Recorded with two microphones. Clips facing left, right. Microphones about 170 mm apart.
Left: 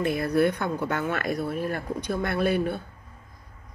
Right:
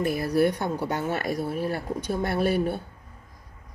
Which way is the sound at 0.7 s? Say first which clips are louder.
Even; 35° right (ahead or behind).